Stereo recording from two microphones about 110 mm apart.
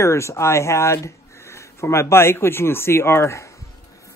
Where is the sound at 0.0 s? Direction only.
25° left (ahead or behind).